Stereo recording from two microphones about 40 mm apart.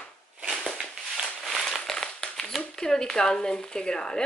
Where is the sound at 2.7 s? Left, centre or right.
Centre.